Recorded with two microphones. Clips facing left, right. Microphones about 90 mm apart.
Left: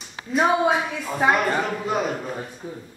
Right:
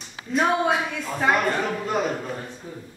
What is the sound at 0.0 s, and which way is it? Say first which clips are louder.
A woman's voice: left 2 dB; 5° left (ahead or behind).